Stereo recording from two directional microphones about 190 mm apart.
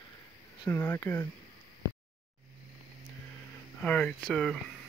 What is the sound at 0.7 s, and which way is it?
Speech, 15° left (ahead or behind).